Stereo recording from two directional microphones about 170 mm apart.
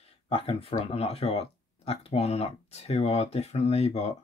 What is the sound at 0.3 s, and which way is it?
Speech, 35° left (ahead or behind).